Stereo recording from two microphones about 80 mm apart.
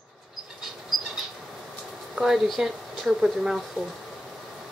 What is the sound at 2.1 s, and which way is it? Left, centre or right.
Speech, centre.